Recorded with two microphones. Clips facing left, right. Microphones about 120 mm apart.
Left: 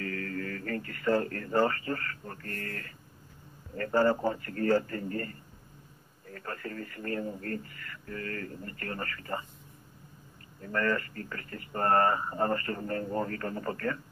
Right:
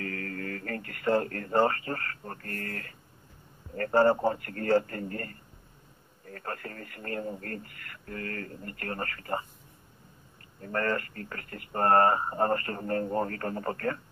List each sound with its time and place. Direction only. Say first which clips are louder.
0.0 s radio: left 1 dB; 40° right (ahead or behind)
1.0 s speech: right 1 dB; 35° right (ahead or behind)
3.9 s a man's voice: right 3 dB; 30° right (ahead or behind)
4.3 s a man's voice: right 1 dB; 45° right (ahead or behind)
10.6 s speech: even; 40° right (ahead or behind)